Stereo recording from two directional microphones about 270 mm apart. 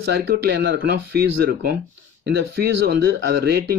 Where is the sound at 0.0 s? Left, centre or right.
Right.